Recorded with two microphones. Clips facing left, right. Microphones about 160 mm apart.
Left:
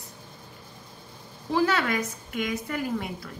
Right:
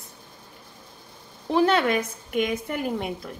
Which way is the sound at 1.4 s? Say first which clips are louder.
Right 4 dB; 25° right (ahead or behind).